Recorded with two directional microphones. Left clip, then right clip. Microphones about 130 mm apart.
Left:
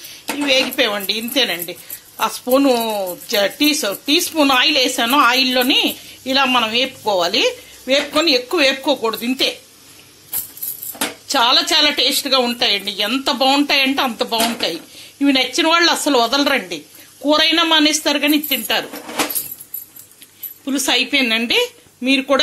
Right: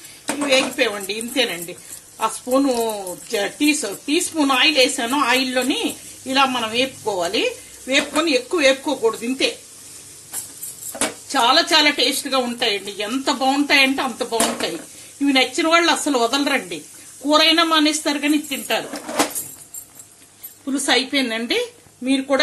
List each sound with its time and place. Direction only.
0.5 s speech: 10° left (ahead or behind)
2.6 s speech: 10° left (ahead or behind)
11.2 s speech: 15° left (ahead or behind)
20.6 s speech: 10° left (ahead or behind)